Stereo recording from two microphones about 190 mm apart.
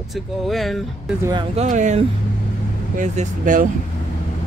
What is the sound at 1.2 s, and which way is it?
Speech, 25° right (ahead or behind).